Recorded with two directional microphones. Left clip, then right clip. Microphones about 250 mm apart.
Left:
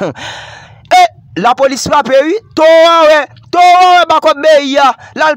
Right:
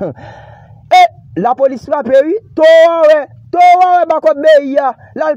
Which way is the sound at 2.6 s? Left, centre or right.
Left.